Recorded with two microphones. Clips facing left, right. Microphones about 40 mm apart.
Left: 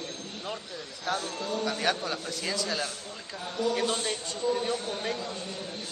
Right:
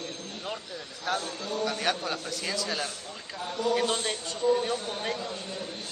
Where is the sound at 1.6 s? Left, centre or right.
Centre.